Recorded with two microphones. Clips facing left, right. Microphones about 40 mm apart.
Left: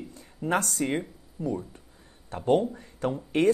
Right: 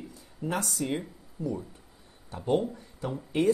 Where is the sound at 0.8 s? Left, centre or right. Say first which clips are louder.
Left 3 dB; left.